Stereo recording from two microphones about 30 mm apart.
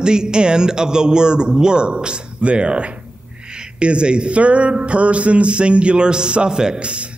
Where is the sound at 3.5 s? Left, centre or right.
Right.